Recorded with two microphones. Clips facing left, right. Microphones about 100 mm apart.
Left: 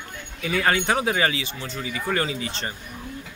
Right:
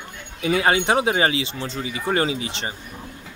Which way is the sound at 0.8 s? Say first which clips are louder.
Right 3 dB; 25° right (ahead or behind).